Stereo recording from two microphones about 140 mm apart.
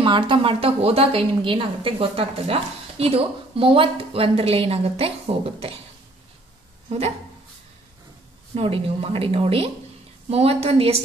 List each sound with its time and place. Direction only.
0.0 s a woman's voice: 35° right (ahead or behind)
8.5 s a woman's voice: 40° right (ahead or behind)